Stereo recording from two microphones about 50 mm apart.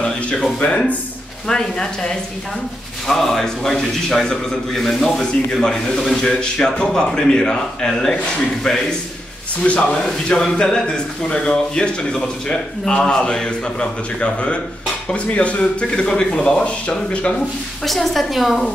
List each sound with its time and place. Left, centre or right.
0.0 s a sound: centre
1.5 s a man's voice: centre
9.6 s a man's voice: left
17.8 s a woman's voice: centre